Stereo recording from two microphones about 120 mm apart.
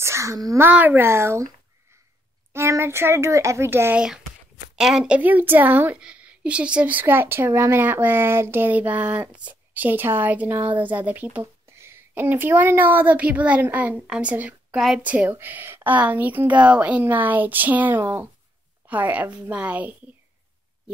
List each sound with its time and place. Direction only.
0.0 s a child's voice: 25° right (ahead or behind)
0.7 s a child's voice: 15° right (ahead or behind)
2.5 s a child's voice: 20° right (ahead or behind)
4.7 s a woman's voice: 5° right (ahead or behind)